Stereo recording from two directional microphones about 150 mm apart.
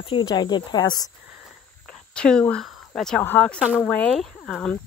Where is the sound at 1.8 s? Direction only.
5° left (ahead or behind).